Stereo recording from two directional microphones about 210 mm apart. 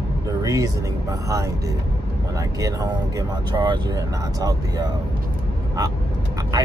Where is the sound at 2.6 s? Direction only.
15° right (ahead or behind).